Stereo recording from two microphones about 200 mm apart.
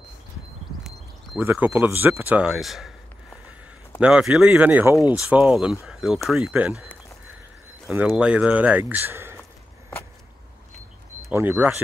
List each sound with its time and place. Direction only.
0.8 s a sound: centre (ahead or behind)
1.5 s speech: 10° right (ahead or behind)
4.0 s speech: 5° right (ahead or behind)
4.9 s speech: 15° left (ahead or behind)
5.3 s speech: 5° right (ahead or behind)
8.1 s speech: 5° right (ahead or behind)
11.3 s speech: 10° right (ahead or behind)